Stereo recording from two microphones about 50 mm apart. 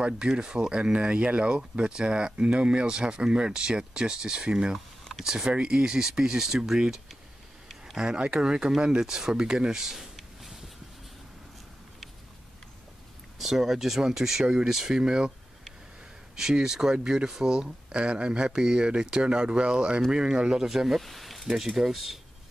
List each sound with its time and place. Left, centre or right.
0.3 s speech: centre
4.7 s a sound: centre
5.2 s speech: centre
7.8 s a sound: centre
8.2 s speech: centre
13.4 s speech: centre
16.3 s speech: centre